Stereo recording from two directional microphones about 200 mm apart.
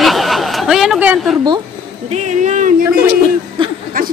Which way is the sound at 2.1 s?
35° right (ahead or behind).